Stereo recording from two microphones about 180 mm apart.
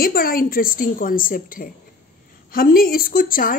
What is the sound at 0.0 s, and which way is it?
A woman's voice, 55° left (ahead or behind).